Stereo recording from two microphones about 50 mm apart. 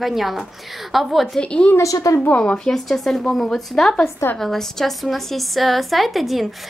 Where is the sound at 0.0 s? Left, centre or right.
Centre.